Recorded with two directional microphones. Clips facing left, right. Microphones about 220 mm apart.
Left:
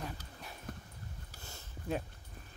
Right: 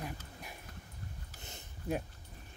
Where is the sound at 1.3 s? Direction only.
20° right (ahead or behind).